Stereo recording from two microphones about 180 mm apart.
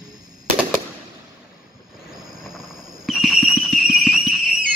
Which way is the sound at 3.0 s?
Centre (ahead or behind).